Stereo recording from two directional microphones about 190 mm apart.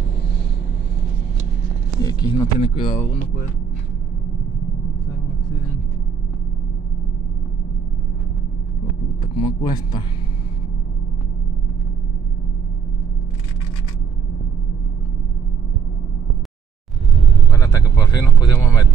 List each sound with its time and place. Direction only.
2.0 s speech: 20° left (ahead or behind)
9.4 s speech: 20° left (ahead or behind)
17.5 s vehicle: 20° left (ahead or behind)